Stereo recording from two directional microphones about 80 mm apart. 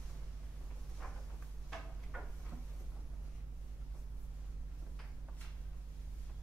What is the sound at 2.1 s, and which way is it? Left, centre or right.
Cupboard open or close, centre.